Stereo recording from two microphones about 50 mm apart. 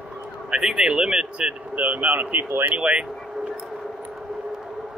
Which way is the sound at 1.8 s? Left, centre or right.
Right.